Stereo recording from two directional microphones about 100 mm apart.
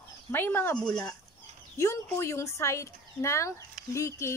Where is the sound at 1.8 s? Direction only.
30° left (ahead or behind).